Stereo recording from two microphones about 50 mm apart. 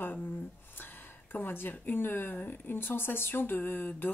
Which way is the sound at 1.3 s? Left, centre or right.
Left.